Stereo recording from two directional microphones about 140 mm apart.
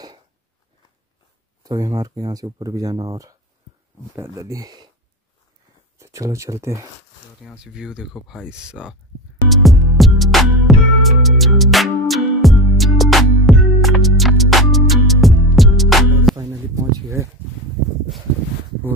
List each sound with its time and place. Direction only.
1.6 s speech: 25° right (ahead or behind)
5.9 s speech: 20° right (ahead or behind)
7.4 s speech: 5° right (ahead or behind)
9.5 s music: centre (ahead or behind)
16.3 s a sound: 25° right (ahead or behind)